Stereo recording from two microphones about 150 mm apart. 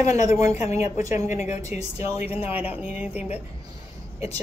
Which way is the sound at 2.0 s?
45° left (ahead or behind).